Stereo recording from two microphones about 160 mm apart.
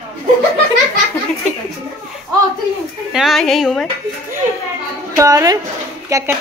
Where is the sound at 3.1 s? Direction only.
Centre (ahead or behind).